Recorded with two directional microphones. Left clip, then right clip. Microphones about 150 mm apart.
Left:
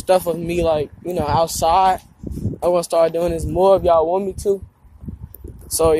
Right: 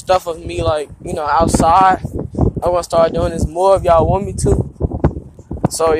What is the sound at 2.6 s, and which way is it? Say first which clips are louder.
Speech: right 2 dB; 15° left (ahead or behind).